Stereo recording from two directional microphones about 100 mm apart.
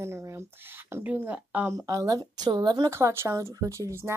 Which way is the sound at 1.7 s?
35° right (ahead or behind).